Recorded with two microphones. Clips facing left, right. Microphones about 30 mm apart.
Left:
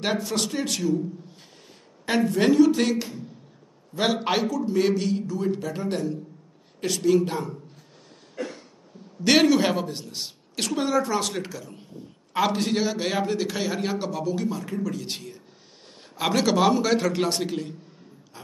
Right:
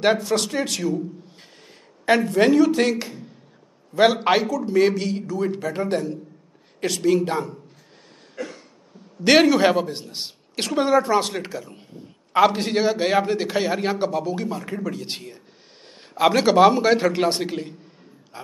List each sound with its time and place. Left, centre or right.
0.0 s a man's voice: right
2.0 s a man's voice: right
4.5 s a man's voice: right
5.4 s a man's voice: right
8.4 s a sound: centre
9.2 s a man's voice: right
18.3 s a sound: right